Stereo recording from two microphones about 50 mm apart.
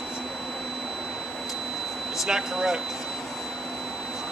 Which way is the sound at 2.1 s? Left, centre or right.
Centre.